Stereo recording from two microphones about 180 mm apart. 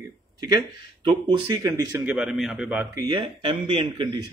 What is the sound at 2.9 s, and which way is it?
A man's voice, 25° right (ahead or behind).